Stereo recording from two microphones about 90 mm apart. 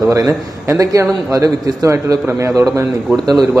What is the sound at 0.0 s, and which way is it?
A man's voice, 35° right (ahead or behind).